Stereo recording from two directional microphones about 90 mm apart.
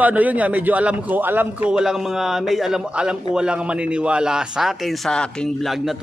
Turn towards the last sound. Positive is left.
turn(degrees=0)  # may be behind; listen again after turning